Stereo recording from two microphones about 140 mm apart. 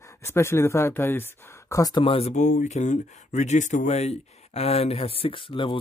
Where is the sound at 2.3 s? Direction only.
60° left (ahead or behind).